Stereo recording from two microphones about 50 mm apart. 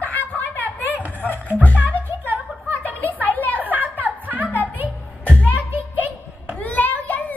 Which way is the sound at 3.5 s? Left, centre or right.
Right.